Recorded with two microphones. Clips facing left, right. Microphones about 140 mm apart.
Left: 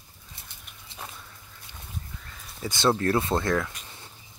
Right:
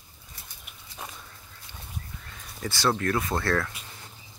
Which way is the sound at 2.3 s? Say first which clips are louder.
Even; centre (ahead or behind).